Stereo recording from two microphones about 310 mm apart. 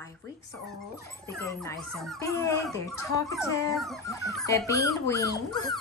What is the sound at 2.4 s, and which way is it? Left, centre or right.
Speech, centre.